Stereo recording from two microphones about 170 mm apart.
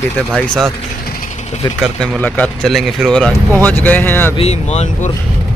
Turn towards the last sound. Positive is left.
turn(degrees=40)  # may be behind; listen again after turning